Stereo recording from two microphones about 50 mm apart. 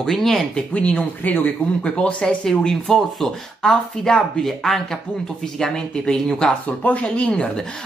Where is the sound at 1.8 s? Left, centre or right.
Centre.